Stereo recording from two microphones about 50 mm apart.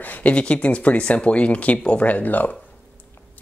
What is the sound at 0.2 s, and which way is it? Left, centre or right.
Speech, left.